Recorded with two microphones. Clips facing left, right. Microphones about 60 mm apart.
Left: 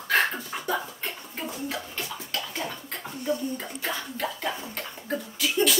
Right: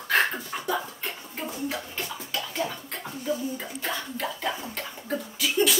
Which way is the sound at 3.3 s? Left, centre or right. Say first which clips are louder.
Left 1 dB; centre.